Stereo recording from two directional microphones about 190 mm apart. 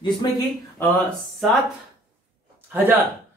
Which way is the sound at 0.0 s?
20° left (ahead or behind).